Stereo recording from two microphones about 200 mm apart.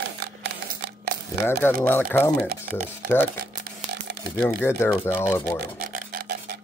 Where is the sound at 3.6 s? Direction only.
55° right (ahead or behind).